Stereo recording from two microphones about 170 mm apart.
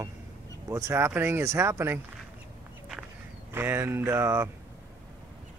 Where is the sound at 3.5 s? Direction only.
10° right (ahead or behind).